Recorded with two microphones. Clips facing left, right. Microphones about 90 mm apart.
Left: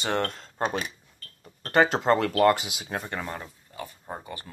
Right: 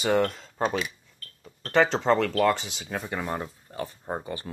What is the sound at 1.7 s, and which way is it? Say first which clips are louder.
Speech: even; 5° left (ahead or behind).